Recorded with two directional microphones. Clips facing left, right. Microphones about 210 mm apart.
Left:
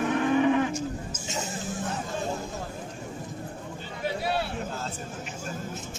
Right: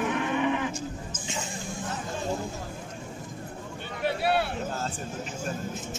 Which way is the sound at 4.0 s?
65° right (ahead or behind).